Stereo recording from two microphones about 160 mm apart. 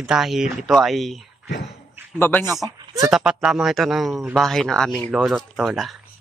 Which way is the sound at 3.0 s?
5° right (ahead or behind).